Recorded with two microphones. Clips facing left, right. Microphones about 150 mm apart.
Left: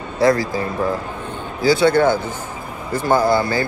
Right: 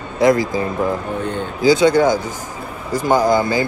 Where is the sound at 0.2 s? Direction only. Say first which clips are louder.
Right 2 dB; 20° right (ahead or behind).